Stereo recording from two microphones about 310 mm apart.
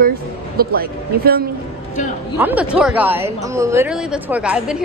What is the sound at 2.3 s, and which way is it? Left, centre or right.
A woman's voice, centre.